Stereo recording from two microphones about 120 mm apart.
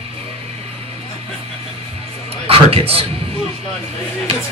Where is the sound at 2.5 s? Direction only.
55° right (ahead or behind).